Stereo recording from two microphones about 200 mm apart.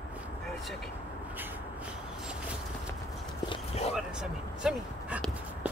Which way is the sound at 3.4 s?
30° left (ahead or behind).